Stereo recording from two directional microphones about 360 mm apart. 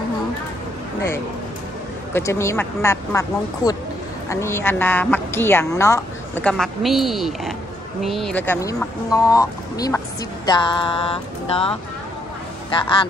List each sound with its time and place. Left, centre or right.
2.1 s a woman's voice: centre